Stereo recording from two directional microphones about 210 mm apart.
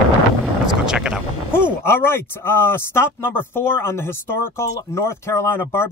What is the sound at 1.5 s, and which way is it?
Speech, 10° left (ahead or behind).